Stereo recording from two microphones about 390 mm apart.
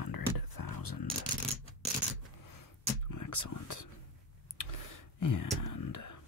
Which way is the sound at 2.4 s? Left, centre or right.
Left.